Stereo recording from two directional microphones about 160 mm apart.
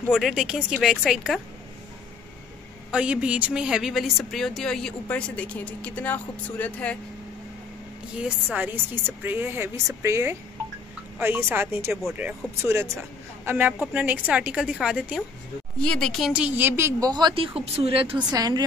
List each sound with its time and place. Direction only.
0.1 s a woman's voice: 5° right (ahead or behind)
2.9 s a woman's voice: 5° right (ahead or behind); by 7.0 s 10° left (ahead or behind)
8.2 s speech: 10° right (ahead or behind)
15.8 s a woman's voice: 5° left (ahead or behind); by 18.2 s 35° right (ahead or behind)
18.3 s a woman's voice: 25° right (ahead or behind)